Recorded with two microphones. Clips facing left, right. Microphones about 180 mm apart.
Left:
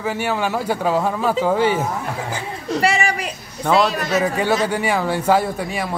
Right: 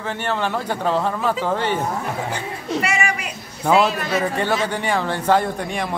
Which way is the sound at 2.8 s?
35° left (ahead or behind).